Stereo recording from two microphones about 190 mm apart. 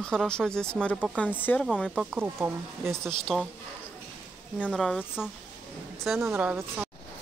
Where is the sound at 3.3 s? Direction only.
Centre (ahead or behind).